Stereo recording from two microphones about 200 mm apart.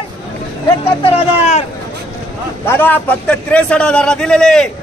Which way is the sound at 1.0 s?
30° left (ahead or behind).